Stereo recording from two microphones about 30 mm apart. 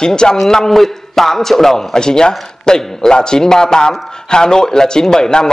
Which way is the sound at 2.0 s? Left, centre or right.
Left.